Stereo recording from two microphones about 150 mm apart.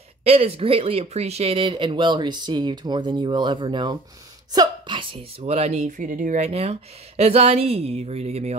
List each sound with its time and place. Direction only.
0.2 s speech: 45° right (ahead or behind)